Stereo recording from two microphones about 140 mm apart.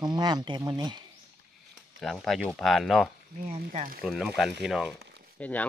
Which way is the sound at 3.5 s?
55° right (ahead or behind).